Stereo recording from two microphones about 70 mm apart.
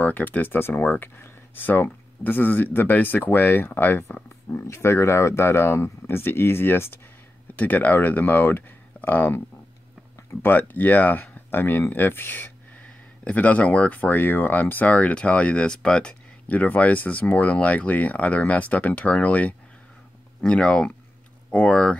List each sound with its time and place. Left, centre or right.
0.0 s speech: left
10.4 s speech: left
11.9 s a sound: left
13.2 s speech: left